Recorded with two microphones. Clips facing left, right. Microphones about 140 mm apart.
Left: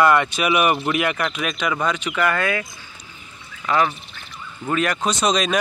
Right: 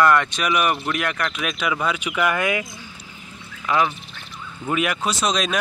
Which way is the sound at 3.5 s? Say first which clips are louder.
Left 1 dB; centre (ahead or behind).